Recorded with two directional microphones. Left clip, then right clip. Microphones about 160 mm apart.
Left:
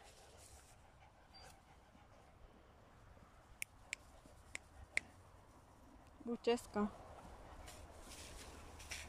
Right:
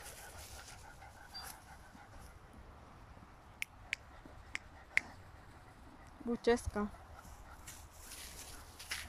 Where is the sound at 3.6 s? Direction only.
20° left (ahead or behind).